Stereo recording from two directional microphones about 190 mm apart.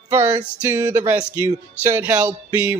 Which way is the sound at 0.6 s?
15° right (ahead or behind).